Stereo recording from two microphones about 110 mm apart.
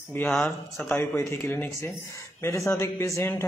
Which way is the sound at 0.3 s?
Centre (ahead or behind).